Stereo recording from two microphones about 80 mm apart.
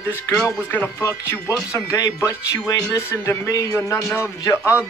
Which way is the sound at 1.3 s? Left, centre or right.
Left.